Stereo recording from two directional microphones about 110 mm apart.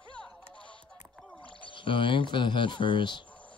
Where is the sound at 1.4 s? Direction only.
50° left (ahead or behind).